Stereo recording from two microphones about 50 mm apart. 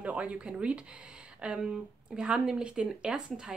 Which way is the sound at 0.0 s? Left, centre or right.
Right.